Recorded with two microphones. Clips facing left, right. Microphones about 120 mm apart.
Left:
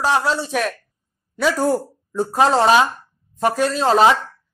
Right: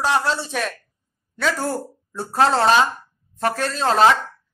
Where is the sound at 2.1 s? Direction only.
5° left (ahead or behind).